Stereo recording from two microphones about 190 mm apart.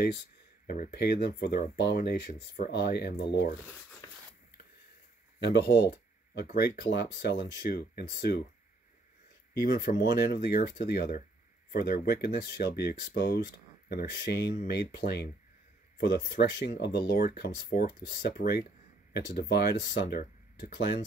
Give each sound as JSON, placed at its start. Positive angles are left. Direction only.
{"t": 0.7, "sound": "speech", "side_deg": 55}
{"t": 3.6, "sound": "speech", "side_deg": 0}
{"t": 5.4, "sound": "speech", "side_deg": 60}
{"t": 10.1, "sound": "speech", "side_deg": 55}